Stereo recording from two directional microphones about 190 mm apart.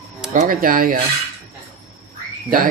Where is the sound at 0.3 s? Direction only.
45° right (ahead or behind).